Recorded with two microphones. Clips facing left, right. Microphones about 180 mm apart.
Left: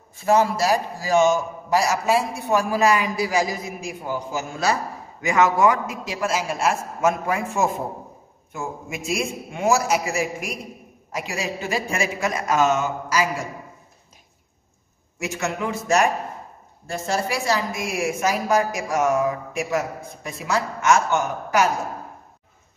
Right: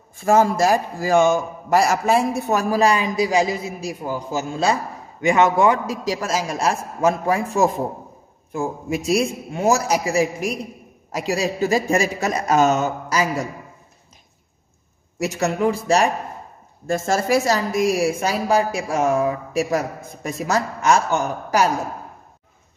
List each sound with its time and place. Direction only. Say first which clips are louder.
0.1 s a man's voice: right 2 dB; 50° right (ahead or behind); by 3.7 s 25° right (ahead or behind)
3.8 s a woman's voice: right 2 dB; 35° right (ahead or behind)
15.1 s a woman's voice: right 5 dB; 35° right (ahead or behind)
16.8 s a woman's voice: right 5 dB; 45° right (ahead or behind)